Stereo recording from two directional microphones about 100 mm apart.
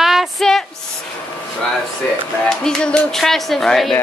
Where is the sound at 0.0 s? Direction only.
5° right (ahead or behind).